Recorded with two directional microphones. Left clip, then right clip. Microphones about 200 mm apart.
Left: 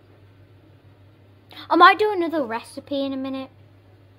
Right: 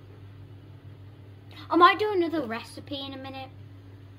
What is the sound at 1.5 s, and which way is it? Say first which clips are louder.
A woman's voice: left 6 dB; 45° left (ahead or behind).